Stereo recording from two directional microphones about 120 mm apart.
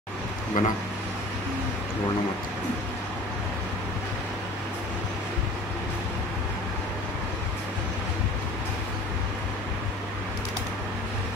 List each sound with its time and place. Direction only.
0.6 s speech: 90° left